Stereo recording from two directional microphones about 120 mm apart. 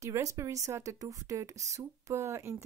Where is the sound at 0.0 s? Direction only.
25° right (ahead or behind).